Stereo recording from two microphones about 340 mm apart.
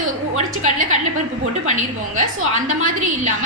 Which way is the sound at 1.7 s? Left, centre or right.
Right.